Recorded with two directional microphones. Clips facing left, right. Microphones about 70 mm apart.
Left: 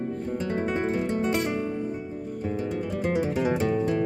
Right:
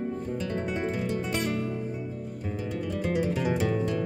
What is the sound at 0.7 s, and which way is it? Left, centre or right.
Guitar, left.